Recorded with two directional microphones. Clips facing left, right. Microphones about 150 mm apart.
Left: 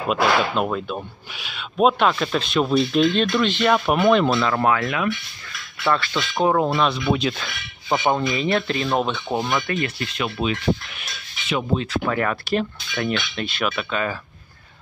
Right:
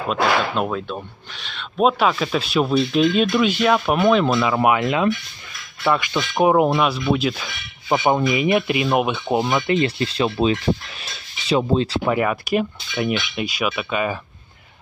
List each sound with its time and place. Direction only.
0.1 s speech: centre (ahead or behind)
7.9 s speech: 15° right (ahead or behind); by 12.0 s 30° right (ahead or behind)
12.1 s speech: 10° right (ahead or behind)